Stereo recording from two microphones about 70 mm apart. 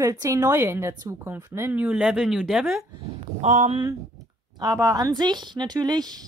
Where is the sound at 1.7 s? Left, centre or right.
Right.